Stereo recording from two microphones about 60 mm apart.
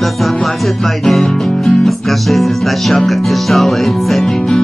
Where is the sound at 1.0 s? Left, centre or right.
Centre.